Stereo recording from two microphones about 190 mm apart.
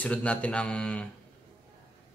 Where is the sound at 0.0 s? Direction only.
5° left (ahead or behind).